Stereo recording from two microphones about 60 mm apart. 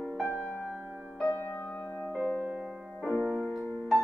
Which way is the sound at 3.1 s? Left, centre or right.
Left.